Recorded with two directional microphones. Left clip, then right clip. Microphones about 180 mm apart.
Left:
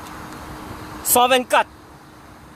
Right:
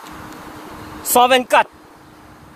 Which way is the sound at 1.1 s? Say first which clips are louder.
Right 3 dB; 15° right (ahead or behind).